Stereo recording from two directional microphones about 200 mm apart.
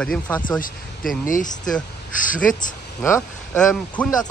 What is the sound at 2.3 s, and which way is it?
Speech, 40° left (ahead or behind).